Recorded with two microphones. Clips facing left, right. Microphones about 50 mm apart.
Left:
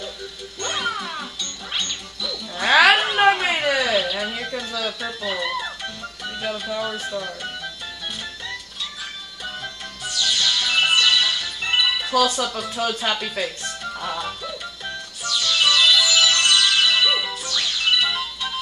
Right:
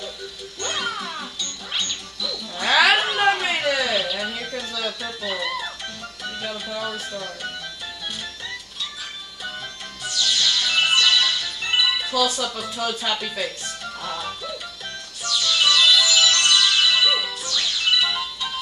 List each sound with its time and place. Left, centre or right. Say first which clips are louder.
0.6 s music: left 2 dB; centre
2.9 s a sound: left 2 dB; centre
3.2 s a sound: left 3 dB; centre
6.2 s speech: left 3 dB; centre
9.4 s music: left 1 dB; centre
12.2 s speech: left 4 dB; left
13.1 s music: left 1 dB; centre